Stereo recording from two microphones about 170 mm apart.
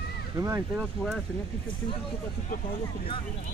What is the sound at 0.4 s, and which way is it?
Speech, 15° right (ahead or behind).